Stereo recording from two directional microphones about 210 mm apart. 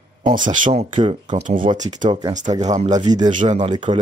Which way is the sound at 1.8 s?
20° right (ahead or behind).